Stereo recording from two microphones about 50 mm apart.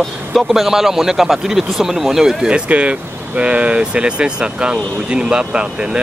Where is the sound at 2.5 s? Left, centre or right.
Right.